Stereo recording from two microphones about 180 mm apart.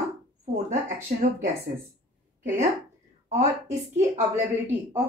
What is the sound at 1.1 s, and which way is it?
Speech, 45° right (ahead or behind).